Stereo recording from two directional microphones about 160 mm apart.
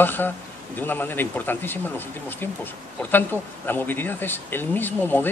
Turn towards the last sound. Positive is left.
turn(degrees=10)  # may be behind; listen again after turning